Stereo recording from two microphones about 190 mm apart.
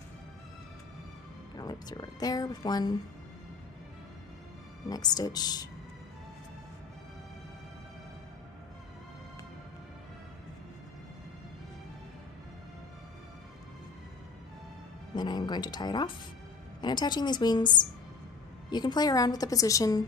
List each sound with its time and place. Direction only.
1.6 s speech: 20° left (ahead or behind)
4.8 s speech: 20° left (ahead or behind)
15.1 s speech: 20° left (ahead or behind)